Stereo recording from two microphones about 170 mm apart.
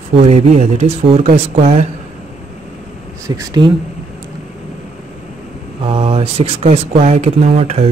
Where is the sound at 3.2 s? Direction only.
20° right (ahead or behind).